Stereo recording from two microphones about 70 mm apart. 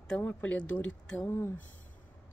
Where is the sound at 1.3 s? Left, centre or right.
Left.